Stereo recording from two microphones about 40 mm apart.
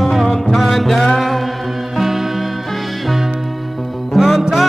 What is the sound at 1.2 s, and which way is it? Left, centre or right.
Mantra, centre.